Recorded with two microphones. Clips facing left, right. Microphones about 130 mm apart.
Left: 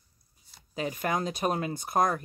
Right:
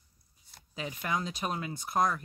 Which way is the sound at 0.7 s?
45° left (ahead or behind).